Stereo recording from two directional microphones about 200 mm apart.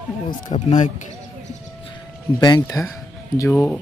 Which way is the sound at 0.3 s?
35° left (ahead or behind).